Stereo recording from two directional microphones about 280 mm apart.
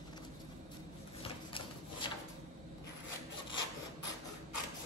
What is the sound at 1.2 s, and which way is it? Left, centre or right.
Rub, centre.